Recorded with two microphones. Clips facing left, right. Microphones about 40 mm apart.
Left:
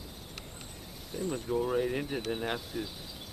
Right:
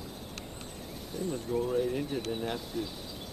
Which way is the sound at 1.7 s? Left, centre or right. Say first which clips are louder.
Even; left.